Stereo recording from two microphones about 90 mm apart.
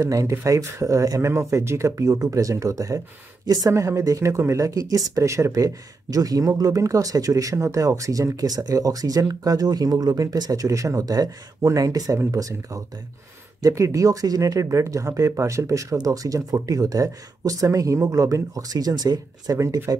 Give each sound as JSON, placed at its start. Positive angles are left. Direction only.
{"t": 0.0, "sound": "speech", "side_deg": -35}